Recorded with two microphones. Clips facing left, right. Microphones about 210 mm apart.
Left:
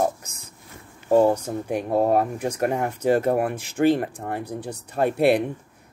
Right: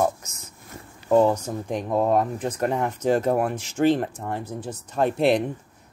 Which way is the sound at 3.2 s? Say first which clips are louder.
Left 1 dB; 55° left (ahead or behind).